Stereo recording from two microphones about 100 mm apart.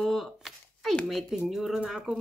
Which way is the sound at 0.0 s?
Centre (ahead or behind).